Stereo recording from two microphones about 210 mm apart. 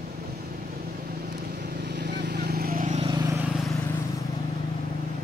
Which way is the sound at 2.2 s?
45° right (ahead or behind).